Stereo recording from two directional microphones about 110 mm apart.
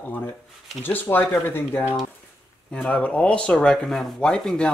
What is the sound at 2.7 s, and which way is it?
Speech, 10° left (ahead or behind).